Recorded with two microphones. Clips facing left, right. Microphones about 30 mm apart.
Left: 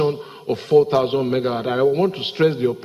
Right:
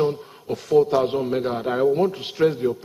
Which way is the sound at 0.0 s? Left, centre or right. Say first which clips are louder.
Left 2 dB; left.